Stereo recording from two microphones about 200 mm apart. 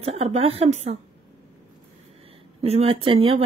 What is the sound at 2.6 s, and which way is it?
Speech, 30° right (ahead or behind).